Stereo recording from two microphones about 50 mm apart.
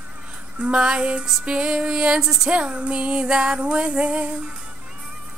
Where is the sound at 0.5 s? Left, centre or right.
Right.